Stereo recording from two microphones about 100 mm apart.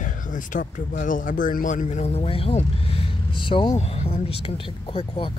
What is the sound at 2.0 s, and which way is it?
Speech, 90° left.